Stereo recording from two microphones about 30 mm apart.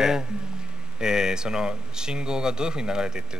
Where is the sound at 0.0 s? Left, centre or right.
Right.